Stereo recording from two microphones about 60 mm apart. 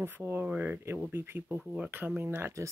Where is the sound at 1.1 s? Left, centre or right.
Right.